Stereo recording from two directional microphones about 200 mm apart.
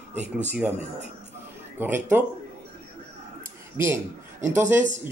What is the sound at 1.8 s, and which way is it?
Speech, 10° right (ahead or behind).